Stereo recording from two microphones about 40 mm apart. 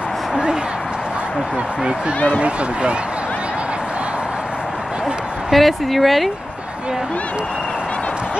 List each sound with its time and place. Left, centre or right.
2.1 s speech: left
2.4 s speech: right
5.5 s speech: centre